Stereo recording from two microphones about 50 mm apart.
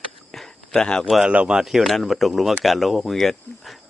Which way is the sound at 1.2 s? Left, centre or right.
Right.